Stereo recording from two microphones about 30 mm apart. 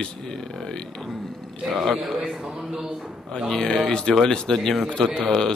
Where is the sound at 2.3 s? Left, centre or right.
Right.